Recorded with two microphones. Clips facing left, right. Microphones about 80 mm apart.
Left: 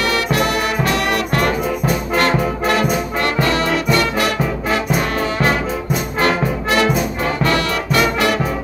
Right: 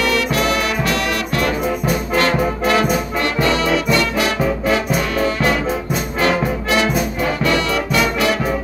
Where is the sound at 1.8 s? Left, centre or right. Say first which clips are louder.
Left 1 dB; left.